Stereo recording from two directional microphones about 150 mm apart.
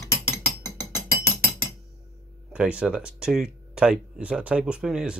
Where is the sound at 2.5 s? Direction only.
10° right (ahead or behind).